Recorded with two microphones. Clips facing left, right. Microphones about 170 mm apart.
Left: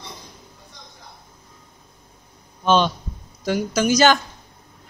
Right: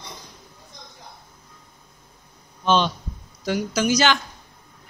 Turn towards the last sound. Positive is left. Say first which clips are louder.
# left 4 dB
turn(degrees=45)  # may be behind; listen again after turning